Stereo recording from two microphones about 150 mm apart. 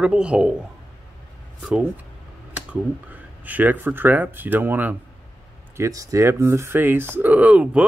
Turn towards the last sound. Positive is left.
turn(degrees=-10)  # may be behind; listen again after turning